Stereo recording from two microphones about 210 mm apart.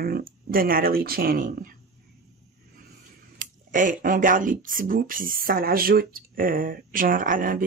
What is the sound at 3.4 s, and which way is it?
Speech, 40° right (ahead or behind).